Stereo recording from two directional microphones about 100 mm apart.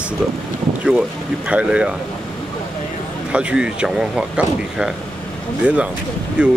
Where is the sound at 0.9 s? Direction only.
10° right (ahead or behind).